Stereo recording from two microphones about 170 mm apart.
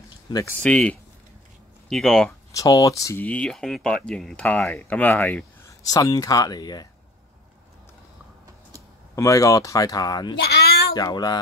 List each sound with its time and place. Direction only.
0.3 s speech: 20° left (ahead or behind)
0.6 s speech: 5° left (ahead or behind)
2.5 s speech: 20° left (ahead or behind)
5.8 s speech: 20° left (ahead or behind)
9.1 s speech: 20° left (ahead or behind)
10.4 s a sound: 70° left (ahead or behind)
11.0 s speech: 25° left (ahead or behind)